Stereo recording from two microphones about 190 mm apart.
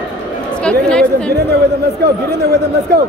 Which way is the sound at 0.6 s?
5° left (ahead or behind).